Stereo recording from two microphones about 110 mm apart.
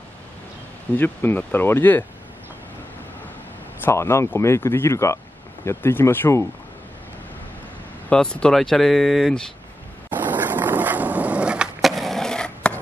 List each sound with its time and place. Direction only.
0.9 s speech: 20° left (ahead or behind)
3.8 s speech: 25° left (ahead or behind)
8.1 s speech: 10° left (ahead or behind)
10.0 s skateboard: 15° right (ahead or behind); by 12.7 s 5° left (ahead or behind)